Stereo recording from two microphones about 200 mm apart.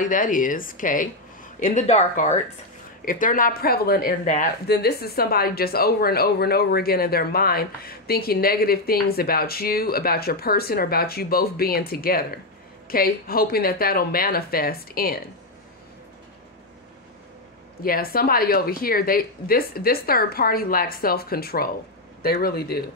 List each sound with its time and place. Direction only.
0.0 s speech: 40° left (ahead or behind)
17.8 s speech: 45° left (ahead or behind)